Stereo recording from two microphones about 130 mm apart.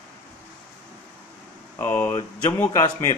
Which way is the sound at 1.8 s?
15° left (ahead or behind).